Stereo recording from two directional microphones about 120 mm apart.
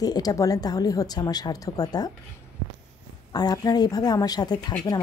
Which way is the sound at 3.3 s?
35° left (ahead or behind).